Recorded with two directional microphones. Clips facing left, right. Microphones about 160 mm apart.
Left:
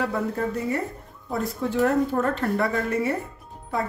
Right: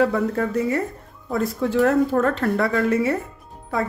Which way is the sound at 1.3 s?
90° right.